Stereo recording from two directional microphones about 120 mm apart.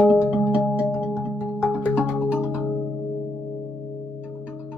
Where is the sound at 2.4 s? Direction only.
25° left (ahead or behind).